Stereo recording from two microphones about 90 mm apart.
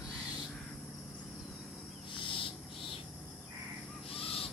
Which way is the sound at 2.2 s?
75° left (ahead or behind).